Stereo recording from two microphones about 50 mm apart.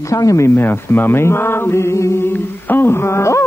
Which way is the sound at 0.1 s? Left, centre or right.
Left.